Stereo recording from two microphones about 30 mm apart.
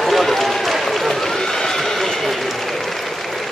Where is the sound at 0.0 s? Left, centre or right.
Centre.